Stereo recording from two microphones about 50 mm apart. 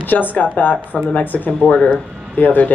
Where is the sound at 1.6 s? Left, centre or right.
Left.